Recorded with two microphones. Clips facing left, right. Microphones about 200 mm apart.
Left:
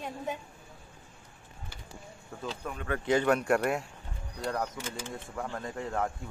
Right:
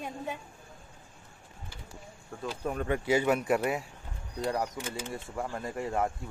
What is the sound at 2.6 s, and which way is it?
Speech, 30° right (ahead or behind).